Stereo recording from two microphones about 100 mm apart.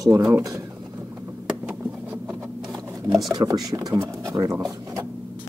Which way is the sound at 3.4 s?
40° right (ahead or behind).